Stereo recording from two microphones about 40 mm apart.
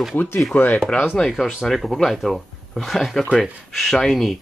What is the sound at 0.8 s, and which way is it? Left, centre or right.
Speech, centre.